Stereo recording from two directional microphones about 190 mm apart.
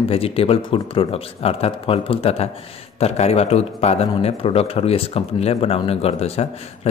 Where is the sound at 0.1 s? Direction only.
30° left (ahead or behind).